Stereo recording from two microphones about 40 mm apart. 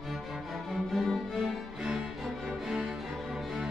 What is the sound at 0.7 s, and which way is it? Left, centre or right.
Music, centre.